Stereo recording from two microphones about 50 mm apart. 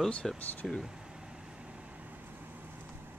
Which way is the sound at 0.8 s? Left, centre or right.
Centre.